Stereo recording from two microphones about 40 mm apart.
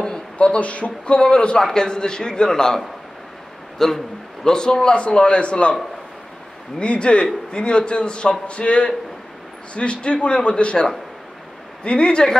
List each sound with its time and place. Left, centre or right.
0.4 s speech: left
1.1 s a man's voice: left
4.5 s a man's voice: centre
6.8 s a man's voice: left